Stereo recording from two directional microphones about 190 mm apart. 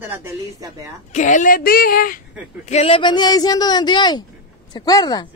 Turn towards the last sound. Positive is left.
turn(degrees=20)  # may be behind; listen again after turning